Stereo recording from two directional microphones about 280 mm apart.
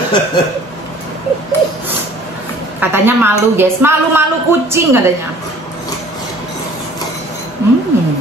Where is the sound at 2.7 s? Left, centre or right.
Centre.